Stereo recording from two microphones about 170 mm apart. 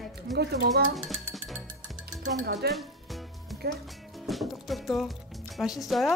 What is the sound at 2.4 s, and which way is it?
Speech, 70° right (ahead or behind).